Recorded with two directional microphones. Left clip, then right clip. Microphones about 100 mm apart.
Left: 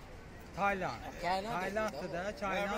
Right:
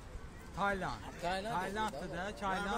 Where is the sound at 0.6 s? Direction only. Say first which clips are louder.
Left 2 dB; 45° right (ahead or behind).